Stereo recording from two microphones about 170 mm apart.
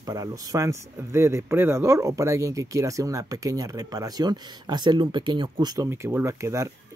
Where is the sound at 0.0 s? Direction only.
20° right (ahead or behind).